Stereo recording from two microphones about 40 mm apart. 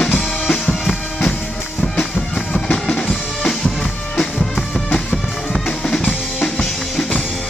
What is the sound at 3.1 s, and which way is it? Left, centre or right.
Drum, centre.